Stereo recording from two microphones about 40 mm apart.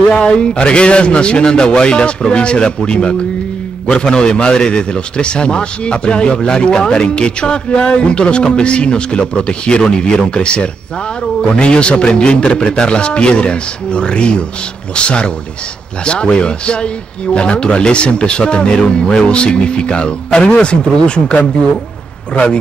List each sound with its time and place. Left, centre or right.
0.2 s a man's voice: left